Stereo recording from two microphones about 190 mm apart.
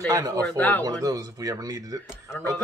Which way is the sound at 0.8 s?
20° right (ahead or behind).